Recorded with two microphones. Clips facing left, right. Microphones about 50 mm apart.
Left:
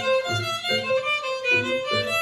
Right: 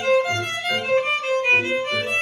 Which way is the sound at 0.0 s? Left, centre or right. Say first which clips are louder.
Right 4 dB; right.